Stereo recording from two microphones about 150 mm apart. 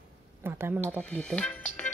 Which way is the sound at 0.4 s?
15° right (ahead or behind).